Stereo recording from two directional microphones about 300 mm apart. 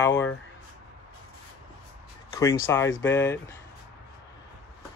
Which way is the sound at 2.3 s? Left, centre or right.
Centre.